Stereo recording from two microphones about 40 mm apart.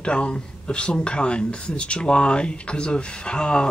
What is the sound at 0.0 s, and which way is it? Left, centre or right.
Speech, left.